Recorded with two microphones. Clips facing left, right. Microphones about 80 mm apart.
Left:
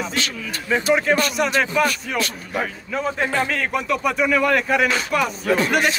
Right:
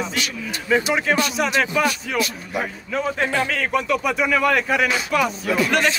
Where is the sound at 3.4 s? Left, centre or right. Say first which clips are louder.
Right 1 dB; centre.